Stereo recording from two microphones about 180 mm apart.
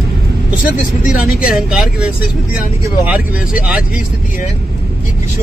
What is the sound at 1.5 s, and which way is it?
Speech, 5° right (ahead or behind).